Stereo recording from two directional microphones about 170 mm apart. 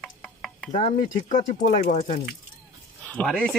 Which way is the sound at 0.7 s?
45° left (ahead or behind).